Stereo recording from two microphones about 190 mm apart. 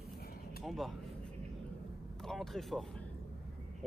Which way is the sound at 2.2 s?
Centre (ahead or behind).